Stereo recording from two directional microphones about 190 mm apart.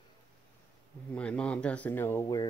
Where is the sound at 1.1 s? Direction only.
5° left (ahead or behind).